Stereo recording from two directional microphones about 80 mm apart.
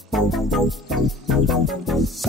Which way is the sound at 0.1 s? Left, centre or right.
Centre.